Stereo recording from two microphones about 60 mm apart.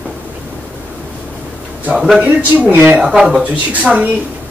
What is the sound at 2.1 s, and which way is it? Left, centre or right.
Speech, right.